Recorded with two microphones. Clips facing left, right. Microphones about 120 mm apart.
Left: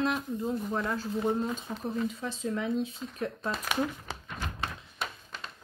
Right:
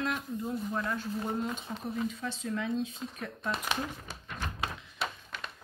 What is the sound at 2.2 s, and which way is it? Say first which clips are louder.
Speech: left 2 dB; 30° left (ahead or behind).